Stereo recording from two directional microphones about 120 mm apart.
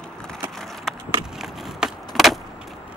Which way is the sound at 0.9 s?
5° left (ahead or behind).